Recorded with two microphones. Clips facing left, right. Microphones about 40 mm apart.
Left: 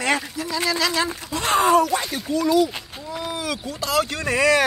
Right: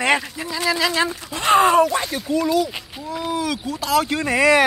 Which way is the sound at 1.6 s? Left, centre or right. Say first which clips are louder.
Right 1 dB; right.